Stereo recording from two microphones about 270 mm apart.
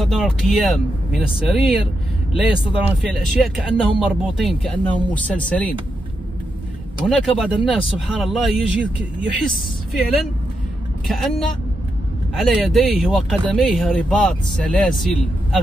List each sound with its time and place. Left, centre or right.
0.0 s speech: centre
7.1 s speech: centre
11.1 s speech: centre